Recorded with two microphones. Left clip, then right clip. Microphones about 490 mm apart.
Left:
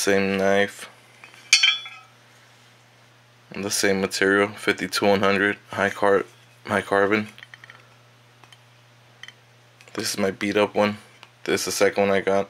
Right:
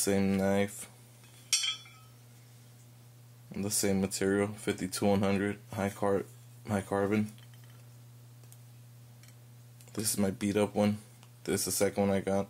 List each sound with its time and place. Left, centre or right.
0.0 s speech: right
3.5 s speech: right
9.9 s speech: right